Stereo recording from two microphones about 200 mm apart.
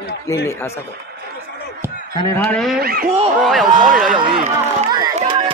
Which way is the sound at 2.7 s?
50° right (ahead or behind).